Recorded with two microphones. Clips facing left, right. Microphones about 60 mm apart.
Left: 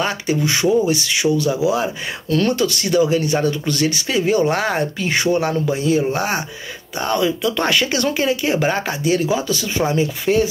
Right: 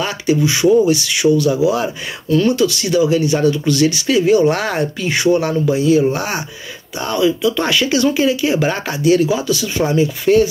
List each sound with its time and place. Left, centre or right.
0.0 s speech: left
2.3 s speech: left
8.6 s speech: left